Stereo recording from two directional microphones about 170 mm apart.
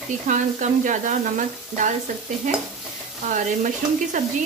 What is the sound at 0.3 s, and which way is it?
Speech, 50° right (ahead or behind).